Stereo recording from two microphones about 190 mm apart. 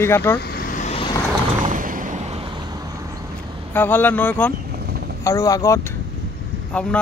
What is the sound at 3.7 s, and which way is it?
Speech, 10° left (ahead or behind).